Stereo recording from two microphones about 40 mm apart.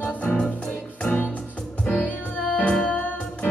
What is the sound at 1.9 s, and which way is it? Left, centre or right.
Music, left.